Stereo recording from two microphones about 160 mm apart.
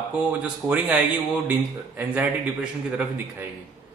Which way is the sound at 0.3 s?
10° right (ahead or behind).